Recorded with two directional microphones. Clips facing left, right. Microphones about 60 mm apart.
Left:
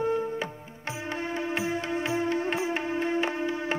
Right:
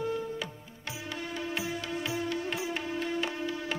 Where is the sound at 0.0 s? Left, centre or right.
Left.